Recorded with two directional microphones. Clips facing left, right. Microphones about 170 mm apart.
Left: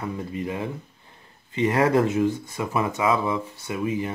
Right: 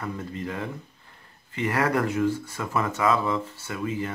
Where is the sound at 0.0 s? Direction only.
15° left (ahead or behind).